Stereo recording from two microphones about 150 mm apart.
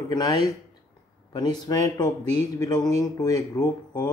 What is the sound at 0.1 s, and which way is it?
Speech, 30° left (ahead or behind).